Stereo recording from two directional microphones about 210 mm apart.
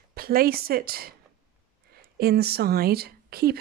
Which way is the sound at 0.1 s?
45° right (ahead or behind).